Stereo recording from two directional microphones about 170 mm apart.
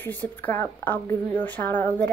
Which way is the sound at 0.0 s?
10° left (ahead or behind).